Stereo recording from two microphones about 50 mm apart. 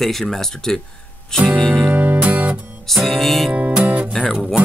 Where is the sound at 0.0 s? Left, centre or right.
Centre.